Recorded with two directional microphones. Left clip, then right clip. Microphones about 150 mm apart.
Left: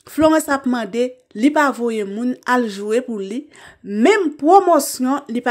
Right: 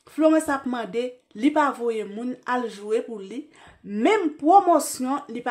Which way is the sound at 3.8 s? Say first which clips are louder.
Left 7 dB; 25° left (ahead or behind).